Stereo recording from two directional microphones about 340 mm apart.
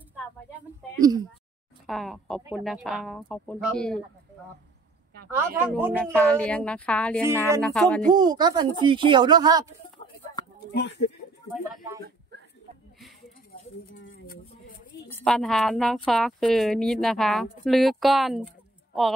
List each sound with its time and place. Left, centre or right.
0.6 s a sound: centre
1.9 s speech: centre
5.6 s speech: centre
8.1 s speech: centre
10.7 s speech: left
11.5 s speech: centre
14.0 s a sound: left
15.1 s speech: centre